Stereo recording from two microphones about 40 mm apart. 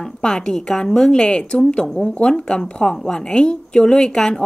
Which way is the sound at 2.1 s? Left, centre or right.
Left.